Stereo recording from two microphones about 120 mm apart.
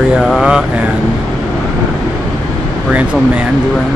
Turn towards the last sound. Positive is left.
turn(degrees=-10)  # may be behind; listen again after turning